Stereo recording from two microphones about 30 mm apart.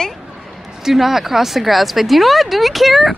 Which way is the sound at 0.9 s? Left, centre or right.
Centre.